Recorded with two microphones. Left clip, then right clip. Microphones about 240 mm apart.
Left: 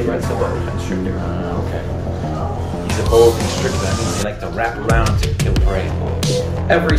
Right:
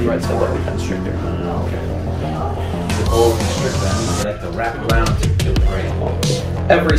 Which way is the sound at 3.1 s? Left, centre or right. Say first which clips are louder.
Left 4 dB; centre.